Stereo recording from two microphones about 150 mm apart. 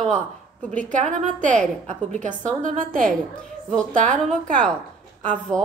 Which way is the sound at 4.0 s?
5° left (ahead or behind).